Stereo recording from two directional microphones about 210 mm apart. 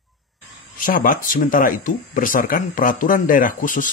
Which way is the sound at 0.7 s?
40° left (ahead or behind).